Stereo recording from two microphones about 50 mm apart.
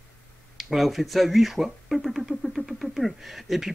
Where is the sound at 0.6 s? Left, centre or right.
Centre.